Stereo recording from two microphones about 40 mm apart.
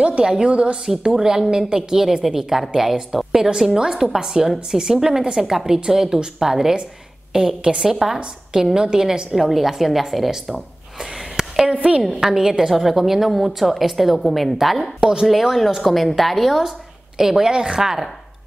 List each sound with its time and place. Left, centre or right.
0.2 s a woman's voice: right
0.8 s a woman's voice: centre
9.3 s a woman's voice: centre
11.0 s sniff: centre
11.6 s a woman's voice: right
12.0 s a woman's voice: centre
12.3 s a woman's voice: centre